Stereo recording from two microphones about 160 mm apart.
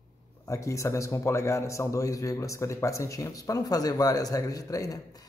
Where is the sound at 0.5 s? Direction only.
20° left (ahead or behind).